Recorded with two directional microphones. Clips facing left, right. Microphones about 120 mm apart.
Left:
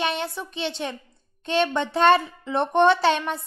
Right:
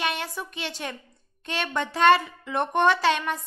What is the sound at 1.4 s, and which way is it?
A woman's voice, 30° left (ahead or behind).